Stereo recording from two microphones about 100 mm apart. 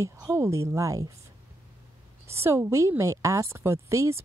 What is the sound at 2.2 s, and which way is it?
A woman's voice, 25° right (ahead or behind).